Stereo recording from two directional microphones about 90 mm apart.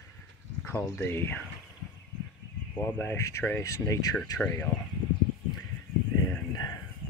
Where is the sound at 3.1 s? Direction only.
35° left (ahead or behind).